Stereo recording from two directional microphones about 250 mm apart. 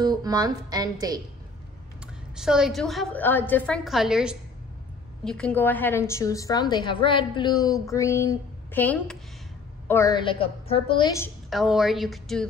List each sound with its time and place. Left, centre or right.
0.0 s speech: centre
2.3 s a woman's voice: centre
11.5 s a woman's voice: centre